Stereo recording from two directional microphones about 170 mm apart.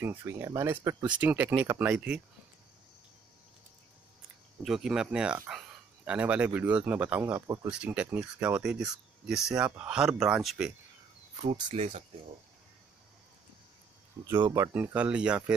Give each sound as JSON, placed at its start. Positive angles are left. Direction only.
{"t": 0.0, "sound": "speech", "side_deg": -15}
{"t": 4.6, "sound": "speech", "side_deg": -5}
{"t": 7.6, "sound": "speech", "side_deg": -5}
{"t": 11.3, "sound": "speech", "side_deg": -35}
{"t": 14.2, "sound": "speech", "side_deg": -20}